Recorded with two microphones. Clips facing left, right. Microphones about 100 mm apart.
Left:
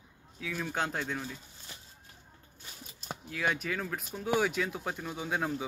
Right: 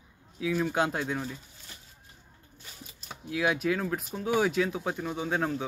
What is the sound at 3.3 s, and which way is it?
Speech, 5° right (ahead or behind).